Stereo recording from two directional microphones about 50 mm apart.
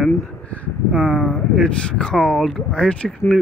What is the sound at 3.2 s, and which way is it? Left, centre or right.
Speech, left.